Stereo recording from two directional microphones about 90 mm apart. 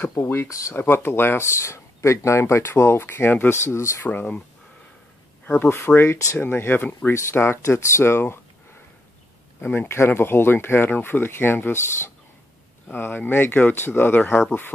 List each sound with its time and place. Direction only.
0.2 s speech: 30° left (ahead or behind)
0.7 s speech: 25° left (ahead or behind)
4.1 s speech: 20° left (ahead or behind)
5.4 s speech: 25° left (ahead or behind)
9.6 s speech: 25° left (ahead or behind)